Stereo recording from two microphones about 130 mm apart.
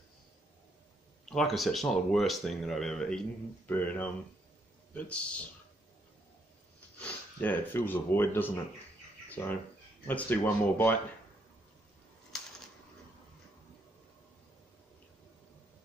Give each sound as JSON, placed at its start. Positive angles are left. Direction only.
{"t": 1.3, "sound": "speech", "side_deg": 0}
{"t": 7.0, "sound": "speech", "side_deg": 15}
{"t": 12.3, "sound": "a sound", "side_deg": 5}